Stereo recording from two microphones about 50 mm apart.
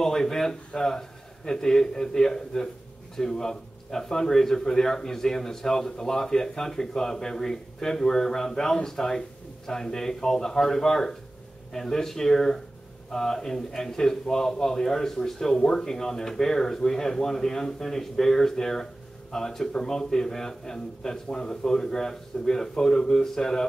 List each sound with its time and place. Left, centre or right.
0.0 s a man's voice: centre